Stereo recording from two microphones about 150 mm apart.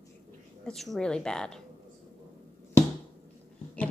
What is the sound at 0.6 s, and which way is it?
A woman's voice, centre (ahead or behind).